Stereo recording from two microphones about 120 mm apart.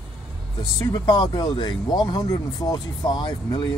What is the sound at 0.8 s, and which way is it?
Speech, 30° left (ahead or behind).